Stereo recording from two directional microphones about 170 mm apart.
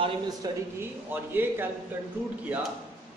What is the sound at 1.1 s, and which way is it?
Speech, 10° right (ahead or behind).